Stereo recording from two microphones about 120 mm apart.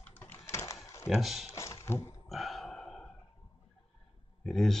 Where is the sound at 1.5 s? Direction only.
25° left (ahead or behind).